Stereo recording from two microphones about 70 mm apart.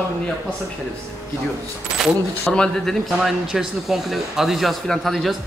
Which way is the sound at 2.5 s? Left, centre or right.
Centre.